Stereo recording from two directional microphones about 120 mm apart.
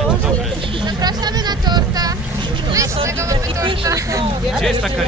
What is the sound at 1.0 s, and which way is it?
Speech, 35° right (ahead or behind).